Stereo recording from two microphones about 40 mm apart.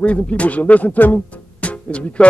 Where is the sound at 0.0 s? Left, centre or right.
Left.